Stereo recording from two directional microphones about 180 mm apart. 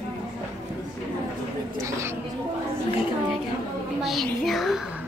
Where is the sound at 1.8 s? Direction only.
15° right (ahead or behind).